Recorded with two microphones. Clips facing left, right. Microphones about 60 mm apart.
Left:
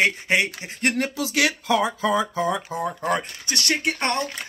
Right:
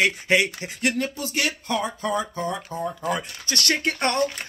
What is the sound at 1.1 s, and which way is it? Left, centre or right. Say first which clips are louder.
Speech: left 4 dB; left.